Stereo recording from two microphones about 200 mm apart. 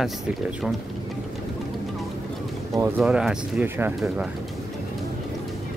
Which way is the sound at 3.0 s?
5° right (ahead or behind).